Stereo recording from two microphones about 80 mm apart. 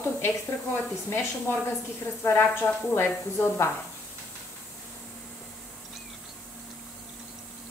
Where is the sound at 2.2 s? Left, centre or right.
Left.